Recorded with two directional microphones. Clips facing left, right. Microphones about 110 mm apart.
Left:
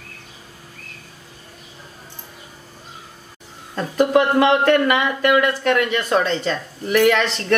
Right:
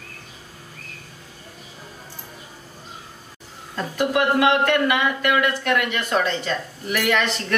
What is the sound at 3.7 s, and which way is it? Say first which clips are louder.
Speech: left 6 dB; 35° left (ahead or behind).